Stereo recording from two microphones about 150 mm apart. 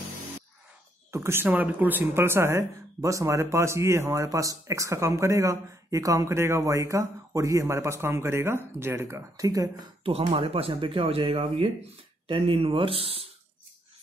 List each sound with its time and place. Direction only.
1.1 s a woman's voice: 15° right (ahead or behind)
10.0 s speech: 35° right (ahead or behind)